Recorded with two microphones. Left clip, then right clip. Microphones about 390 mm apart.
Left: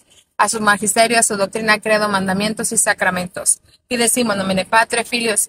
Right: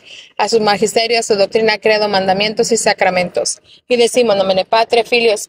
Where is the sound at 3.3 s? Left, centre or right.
Centre.